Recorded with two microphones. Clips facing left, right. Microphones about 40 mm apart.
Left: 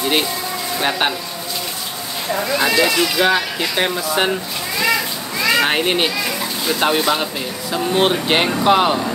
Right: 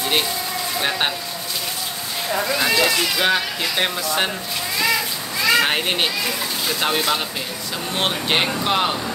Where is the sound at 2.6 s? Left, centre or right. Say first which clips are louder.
Left 4 dB; centre.